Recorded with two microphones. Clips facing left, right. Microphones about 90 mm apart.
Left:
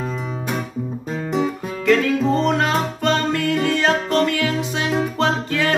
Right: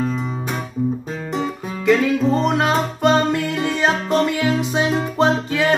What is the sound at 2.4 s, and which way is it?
Music, 15° right (ahead or behind).